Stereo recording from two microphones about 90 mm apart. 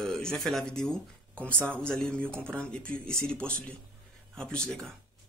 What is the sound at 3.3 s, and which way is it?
Speech, 10° left (ahead or behind).